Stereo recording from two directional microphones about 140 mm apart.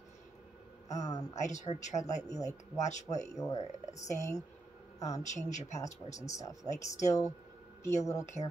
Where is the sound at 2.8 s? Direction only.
55° left (ahead or behind).